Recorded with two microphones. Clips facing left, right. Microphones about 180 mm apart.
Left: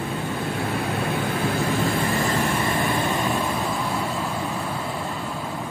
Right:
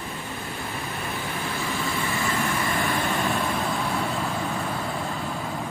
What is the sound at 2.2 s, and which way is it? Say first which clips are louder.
Vehicle: left 3 dB; 35° left (ahead or behind).